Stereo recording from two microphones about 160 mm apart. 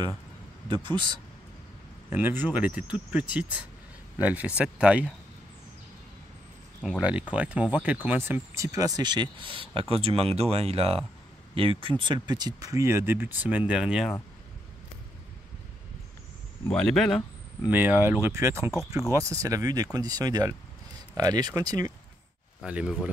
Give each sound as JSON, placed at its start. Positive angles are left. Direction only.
{"t": 0.7, "sound": "speech", "side_deg": -30}
{"t": 2.0, "sound": "speech", "side_deg": -15}
{"t": 6.8, "sound": "speech", "side_deg": -5}
{"t": 16.6, "sound": "speech", "side_deg": 5}
{"t": 17.6, "sound": "speech", "side_deg": -10}
{"t": 22.6, "sound": "speech", "side_deg": -5}